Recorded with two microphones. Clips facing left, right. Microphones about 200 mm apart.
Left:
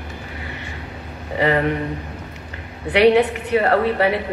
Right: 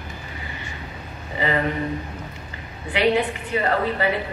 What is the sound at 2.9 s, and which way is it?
A woman's voice, 70° left (ahead or behind).